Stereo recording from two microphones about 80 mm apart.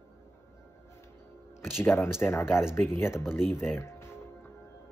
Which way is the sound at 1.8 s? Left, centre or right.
Left.